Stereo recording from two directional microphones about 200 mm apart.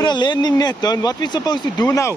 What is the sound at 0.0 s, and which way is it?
Speech, 20° left (ahead or behind).